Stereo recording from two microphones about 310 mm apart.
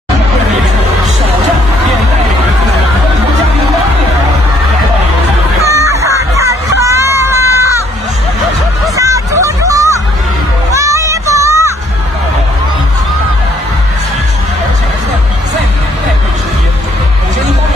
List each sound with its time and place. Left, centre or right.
5.7 s music: centre
8.9 s hubbub: centre
10.7 s music: centre